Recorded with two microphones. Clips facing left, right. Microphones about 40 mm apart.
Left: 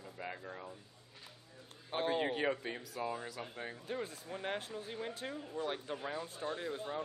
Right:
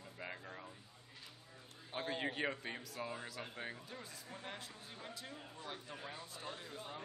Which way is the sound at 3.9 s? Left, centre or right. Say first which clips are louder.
Left 10 dB; left.